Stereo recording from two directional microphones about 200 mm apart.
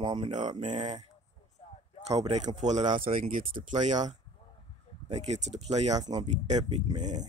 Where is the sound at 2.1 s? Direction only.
35° right (ahead or behind).